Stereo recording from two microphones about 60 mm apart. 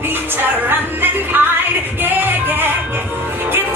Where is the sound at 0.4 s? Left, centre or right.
Right.